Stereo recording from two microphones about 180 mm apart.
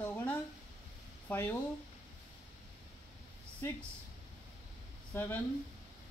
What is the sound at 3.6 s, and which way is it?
Speech, 15° left (ahead or behind).